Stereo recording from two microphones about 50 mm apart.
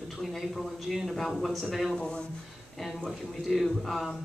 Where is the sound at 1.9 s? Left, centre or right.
Centre.